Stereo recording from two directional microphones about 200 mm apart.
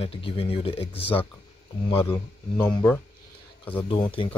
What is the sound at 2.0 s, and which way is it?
Speech, 10° left (ahead or behind).